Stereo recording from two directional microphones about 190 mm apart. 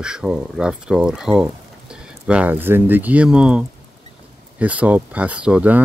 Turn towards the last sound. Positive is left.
turn(degrees=-5)  # may be behind; listen again after turning